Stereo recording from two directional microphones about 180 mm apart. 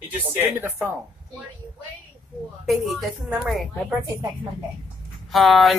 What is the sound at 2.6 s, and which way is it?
Speech, centre (ahead or behind).